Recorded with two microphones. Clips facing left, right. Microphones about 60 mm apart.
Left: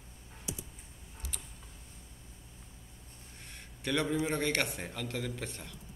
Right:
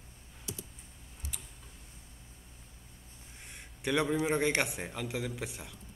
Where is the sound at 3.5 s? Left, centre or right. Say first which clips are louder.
Right 2 dB; centre.